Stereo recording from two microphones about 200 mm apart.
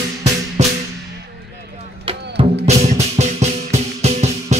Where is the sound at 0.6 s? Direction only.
35° right (ahead or behind).